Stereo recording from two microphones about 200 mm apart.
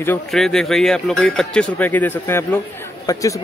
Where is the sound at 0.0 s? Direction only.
5° left (ahead or behind).